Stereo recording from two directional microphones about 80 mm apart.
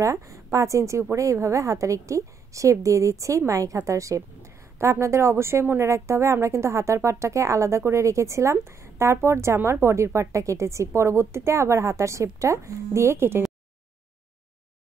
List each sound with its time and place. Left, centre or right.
0.0 s a woman's voice: right